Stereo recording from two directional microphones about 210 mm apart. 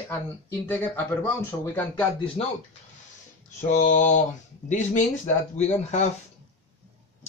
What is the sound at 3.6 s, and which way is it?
Mantra, 35° left (ahead or behind).